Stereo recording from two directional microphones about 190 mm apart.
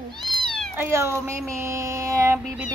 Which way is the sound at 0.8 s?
15° right (ahead or behind).